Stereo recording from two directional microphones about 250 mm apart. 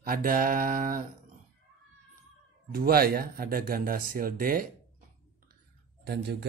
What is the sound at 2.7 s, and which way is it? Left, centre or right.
Speech, right.